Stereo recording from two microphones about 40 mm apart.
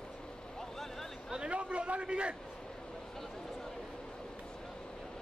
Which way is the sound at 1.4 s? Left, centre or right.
Right.